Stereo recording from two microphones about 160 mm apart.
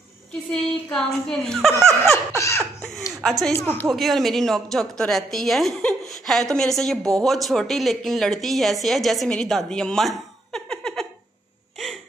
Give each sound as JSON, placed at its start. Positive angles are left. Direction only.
{"t": 0.5, "sound": "a woman's voice", "side_deg": 5}
{"t": 1.7, "sound": "laughter", "side_deg": -15}
{"t": 2.3, "sound": "laughter", "side_deg": 20}
{"t": 3.1, "sound": "speech", "side_deg": 0}
{"t": 3.5, "sound": "speech", "side_deg": 15}
{"t": 3.9, "sound": "a woman's voice", "side_deg": 0}